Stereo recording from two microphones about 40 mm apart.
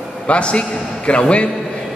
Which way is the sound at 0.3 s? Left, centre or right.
Left.